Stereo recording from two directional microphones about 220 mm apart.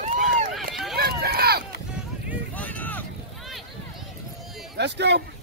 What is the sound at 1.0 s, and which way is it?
Run, 45° right (ahead or behind).